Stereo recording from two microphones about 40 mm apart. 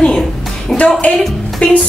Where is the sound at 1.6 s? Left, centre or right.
Left.